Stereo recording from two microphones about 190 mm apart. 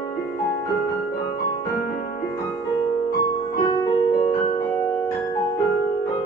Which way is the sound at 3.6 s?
20° left (ahead or behind).